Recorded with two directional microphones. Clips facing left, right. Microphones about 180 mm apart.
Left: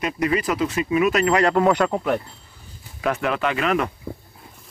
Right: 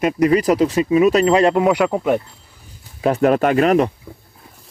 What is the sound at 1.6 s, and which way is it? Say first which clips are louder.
Speech: right 3 dB; 10° right (ahead or behind).